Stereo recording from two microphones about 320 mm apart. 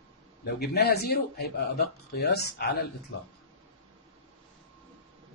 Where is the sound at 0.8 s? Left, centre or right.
Left.